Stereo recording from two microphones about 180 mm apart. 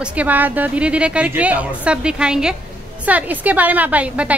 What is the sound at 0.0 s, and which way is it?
A woman's voice, 5° right (ahead or behind).